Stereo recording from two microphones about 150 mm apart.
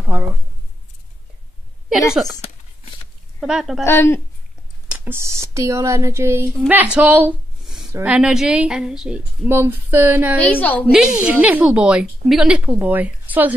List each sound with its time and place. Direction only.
3.3 s a woman's voice: 5° right (ahead or behind)
3.8 s a woman's voice: 15° left (ahead or behind)
4.8 s a woman's voice: 10° right (ahead or behind)
10.4 s a woman's voice: 10° left (ahead or behind)
10.9 s a woman's voice: 5° right (ahead or behind)